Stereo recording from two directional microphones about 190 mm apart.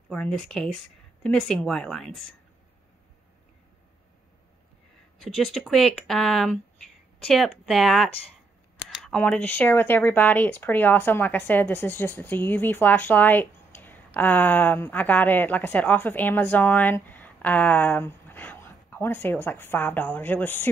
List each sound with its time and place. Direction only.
0.1 s speech: 5° left (ahead or behind)
5.3 s speech: centre (ahead or behind)